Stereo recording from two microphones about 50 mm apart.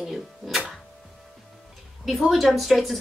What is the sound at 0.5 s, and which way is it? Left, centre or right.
Speech, centre.